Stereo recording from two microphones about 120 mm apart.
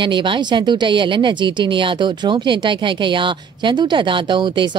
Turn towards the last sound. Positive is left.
turn(degrees=-40)  # may be behind; listen again after turning